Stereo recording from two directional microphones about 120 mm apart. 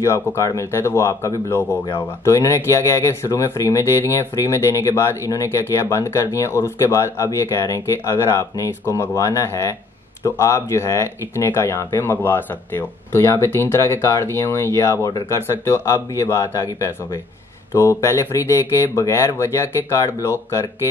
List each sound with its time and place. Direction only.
0.0 s speech: 25° left (ahead or behind)